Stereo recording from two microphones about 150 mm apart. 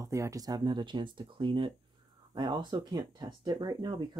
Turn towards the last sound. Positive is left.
turn(degrees=-30)  # may be behind; listen again after turning